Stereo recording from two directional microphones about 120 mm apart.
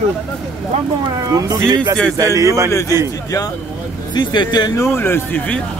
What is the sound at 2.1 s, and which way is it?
Speech, 25° right (ahead or behind).